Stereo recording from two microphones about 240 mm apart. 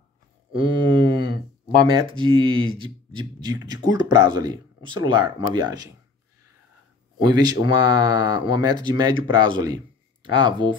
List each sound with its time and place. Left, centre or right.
0.6 s a sound: right
1.9 s speech: centre
7.2 s speech: centre